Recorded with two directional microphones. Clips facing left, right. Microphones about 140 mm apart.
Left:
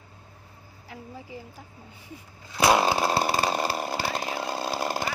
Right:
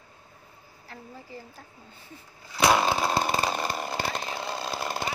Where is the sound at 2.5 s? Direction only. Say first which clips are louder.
Left 1 dB; 10° left (ahead or behind).